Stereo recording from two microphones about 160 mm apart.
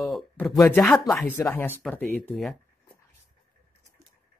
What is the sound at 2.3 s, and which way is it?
Speech, centre (ahead or behind).